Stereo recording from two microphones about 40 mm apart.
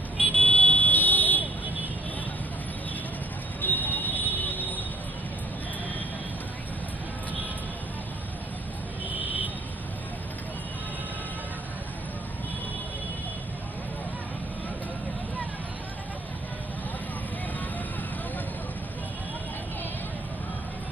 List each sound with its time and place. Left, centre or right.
0.2 s vehicle: left
3.6 s vehicle: left
9.2 s vehicle: right